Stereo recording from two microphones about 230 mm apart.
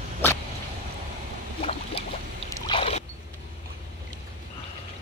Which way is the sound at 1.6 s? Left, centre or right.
Left.